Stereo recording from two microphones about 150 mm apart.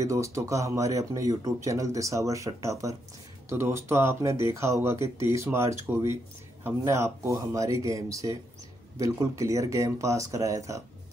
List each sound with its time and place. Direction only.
0.0 s speech: 20° right (ahead or behind)